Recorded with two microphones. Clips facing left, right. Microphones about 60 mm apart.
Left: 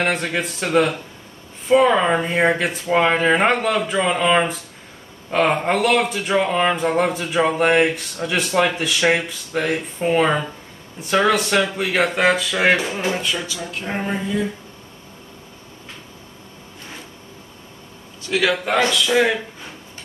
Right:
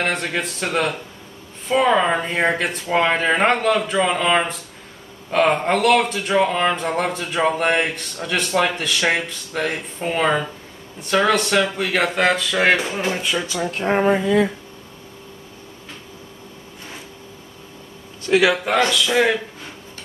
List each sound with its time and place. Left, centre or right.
0.0 s speech: centre
13.5 s speech: right
13.9 s speech: right
18.5 s speech: centre